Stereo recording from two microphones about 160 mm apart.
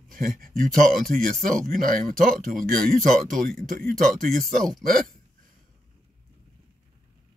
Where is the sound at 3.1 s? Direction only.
Centre (ahead or behind).